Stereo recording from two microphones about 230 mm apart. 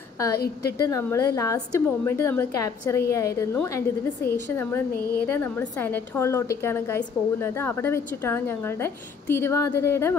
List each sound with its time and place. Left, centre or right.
0.4 s a woman's voice: left
0.8 s a woman's voice: centre
4.9 s speech: left
5.2 s a woman's voice: centre